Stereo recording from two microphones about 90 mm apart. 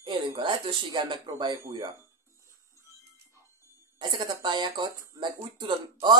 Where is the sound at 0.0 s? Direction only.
60° right (ahead or behind).